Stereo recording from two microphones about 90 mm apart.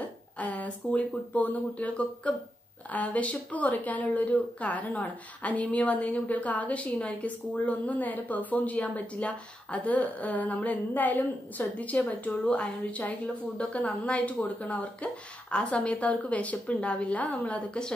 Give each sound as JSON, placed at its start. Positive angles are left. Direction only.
{"t": 0.4, "sound": "speech", "side_deg": 15}